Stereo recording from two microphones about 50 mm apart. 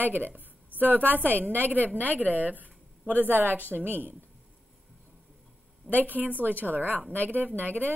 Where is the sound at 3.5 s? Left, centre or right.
Left.